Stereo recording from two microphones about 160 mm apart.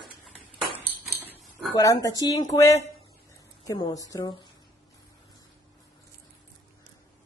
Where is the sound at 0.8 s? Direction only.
10° right (ahead or behind).